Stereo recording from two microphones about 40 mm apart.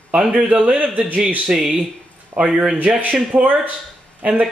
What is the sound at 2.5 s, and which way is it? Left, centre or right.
Speech, right.